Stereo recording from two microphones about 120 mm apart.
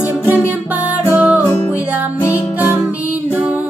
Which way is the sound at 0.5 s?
15° right (ahead or behind).